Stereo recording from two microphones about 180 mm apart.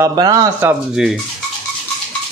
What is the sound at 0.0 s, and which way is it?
Speech, 20° right (ahead or behind).